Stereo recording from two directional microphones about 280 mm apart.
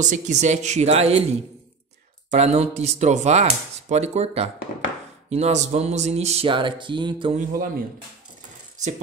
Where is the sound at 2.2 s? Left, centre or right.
Right.